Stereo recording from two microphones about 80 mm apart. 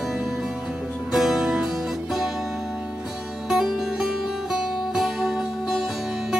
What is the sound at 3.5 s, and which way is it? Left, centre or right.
Music, centre.